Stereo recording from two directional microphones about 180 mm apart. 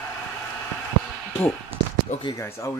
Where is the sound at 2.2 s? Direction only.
25° left (ahead or behind).